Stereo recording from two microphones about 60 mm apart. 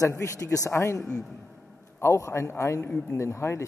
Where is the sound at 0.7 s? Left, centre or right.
Left.